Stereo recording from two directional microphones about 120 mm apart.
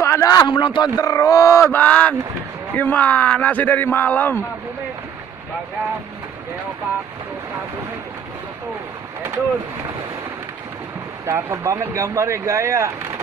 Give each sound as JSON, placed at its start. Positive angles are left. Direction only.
{"t": 0.0, "sound": "a sound", "side_deg": 25}
{"t": 0.5, "sound": "speech", "side_deg": 40}
{"t": 0.9, "sound": "speech", "side_deg": 30}
{"t": 1.7, "sound": "speech", "side_deg": 10}
{"t": 11.2, "sound": "speech", "side_deg": -20}